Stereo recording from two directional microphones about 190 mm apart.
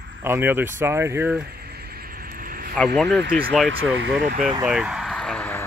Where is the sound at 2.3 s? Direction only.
50° right (ahead or behind).